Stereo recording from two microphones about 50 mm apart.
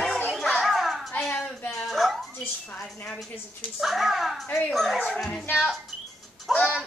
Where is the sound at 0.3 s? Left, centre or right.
Centre.